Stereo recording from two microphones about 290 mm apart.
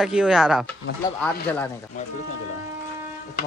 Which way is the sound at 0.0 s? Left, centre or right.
Centre.